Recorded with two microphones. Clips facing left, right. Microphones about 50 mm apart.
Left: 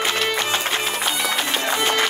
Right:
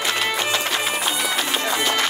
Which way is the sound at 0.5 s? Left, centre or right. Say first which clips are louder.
Even; left.